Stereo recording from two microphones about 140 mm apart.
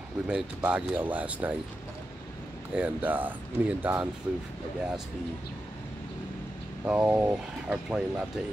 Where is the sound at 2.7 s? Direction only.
10° right (ahead or behind).